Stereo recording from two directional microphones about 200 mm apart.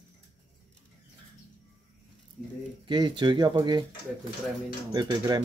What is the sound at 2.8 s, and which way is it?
Speech, 20° right (ahead or behind).